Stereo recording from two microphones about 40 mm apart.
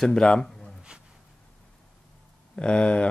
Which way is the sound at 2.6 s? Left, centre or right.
Left.